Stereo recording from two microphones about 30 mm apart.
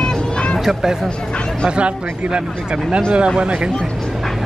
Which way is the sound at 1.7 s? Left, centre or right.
Right.